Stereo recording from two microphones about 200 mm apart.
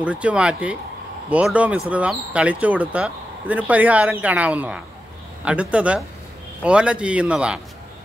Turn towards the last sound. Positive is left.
turn(degrees=-5)  # may be behind; listen again after turning